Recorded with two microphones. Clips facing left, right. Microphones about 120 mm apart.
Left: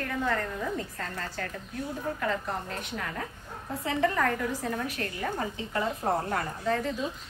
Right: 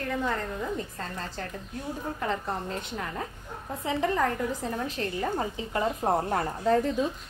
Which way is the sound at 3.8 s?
25° right (ahead or behind).